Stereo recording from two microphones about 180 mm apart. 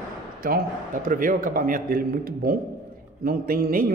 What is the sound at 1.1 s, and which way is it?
A man's voice, 50° right (ahead or behind).